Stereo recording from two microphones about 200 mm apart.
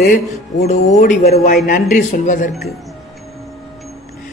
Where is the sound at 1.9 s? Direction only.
40° left (ahead or behind).